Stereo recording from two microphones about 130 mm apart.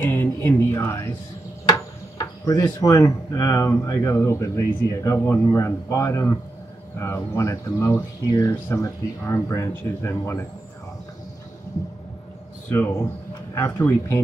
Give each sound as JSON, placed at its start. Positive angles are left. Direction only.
{"t": 0.0, "sound": "speech", "side_deg": 15}
{"t": 12.6, "sound": "speech", "side_deg": 15}